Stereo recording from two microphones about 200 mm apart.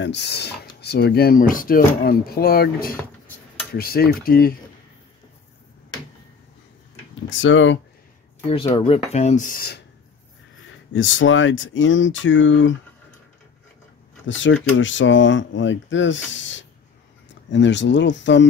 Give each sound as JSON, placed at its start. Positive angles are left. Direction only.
{"t": 0.0, "sound": "speech", "side_deg": 60}
{"t": 7.2, "sound": "speech", "side_deg": 75}
{"t": 8.7, "sound": "speech", "side_deg": 30}
{"t": 10.9, "sound": "speech", "side_deg": 75}
{"t": 14.2, "sound": "speech", "side_deg": 70}